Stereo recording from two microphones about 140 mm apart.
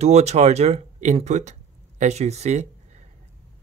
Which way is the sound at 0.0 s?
50° right (ahead or behind).